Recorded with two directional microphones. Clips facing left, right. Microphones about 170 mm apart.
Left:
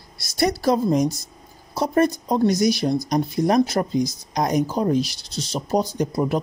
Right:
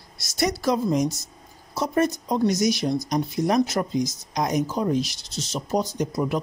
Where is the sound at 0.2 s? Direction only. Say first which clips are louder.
Left 3 dB; 35° left (ahead or behind).